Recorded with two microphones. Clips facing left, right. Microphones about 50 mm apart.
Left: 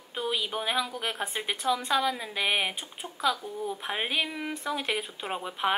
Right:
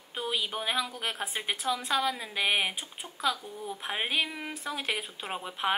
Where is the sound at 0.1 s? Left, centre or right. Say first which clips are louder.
Left 2 dB; centre.